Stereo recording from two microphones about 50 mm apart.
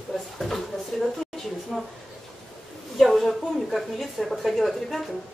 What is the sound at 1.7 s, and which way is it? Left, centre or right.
Speech, centre.